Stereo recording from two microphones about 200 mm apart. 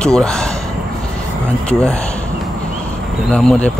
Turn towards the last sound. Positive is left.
turn(degrees=5)  # may be behind; listen again after turning